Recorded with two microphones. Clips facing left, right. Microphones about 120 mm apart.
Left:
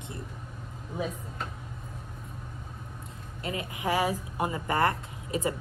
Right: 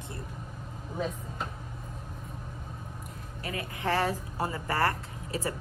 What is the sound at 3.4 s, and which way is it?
Speech, 15° left (ahead or behind).